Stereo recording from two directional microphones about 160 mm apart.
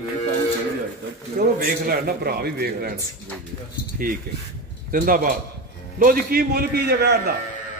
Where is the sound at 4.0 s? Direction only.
60° right (ahead or behind); by 7.3 s 90° right.